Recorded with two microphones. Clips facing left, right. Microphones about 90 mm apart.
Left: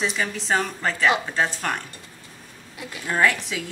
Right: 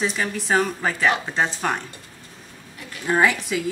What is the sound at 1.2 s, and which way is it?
Speech, 15° right (ahead or behind).